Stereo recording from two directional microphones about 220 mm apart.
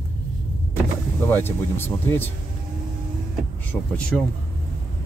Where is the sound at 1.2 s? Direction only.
10° left (ahead or behind).